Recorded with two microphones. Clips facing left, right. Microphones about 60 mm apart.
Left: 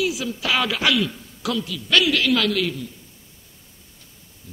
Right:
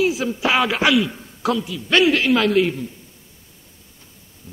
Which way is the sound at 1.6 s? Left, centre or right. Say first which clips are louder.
Right 3 dB; right.